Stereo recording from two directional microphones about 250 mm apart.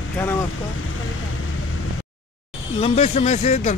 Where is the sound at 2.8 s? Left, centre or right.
Left.